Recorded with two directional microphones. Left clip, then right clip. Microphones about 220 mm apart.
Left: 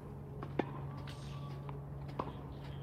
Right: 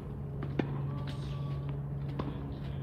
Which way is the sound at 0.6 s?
35° left (ahead or behind).